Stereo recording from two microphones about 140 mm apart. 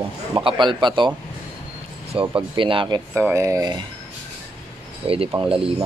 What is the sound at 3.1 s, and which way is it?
Speech, 20° right (ahead or behind).